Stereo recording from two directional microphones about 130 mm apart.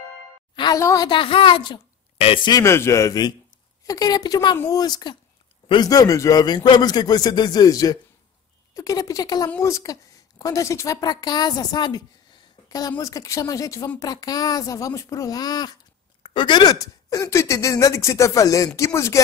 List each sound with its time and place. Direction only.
0.7 s speech: 20° left (ahead or behind)
1.0 s a man's voice: 40° left (ahead or behind)
2.1 s a sound: 50° left (ahead or behind)
2.6 s a man's voice: 20° left (ahead or behind)